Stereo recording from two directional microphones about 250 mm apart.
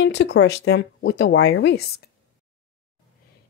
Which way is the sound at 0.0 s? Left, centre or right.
Left.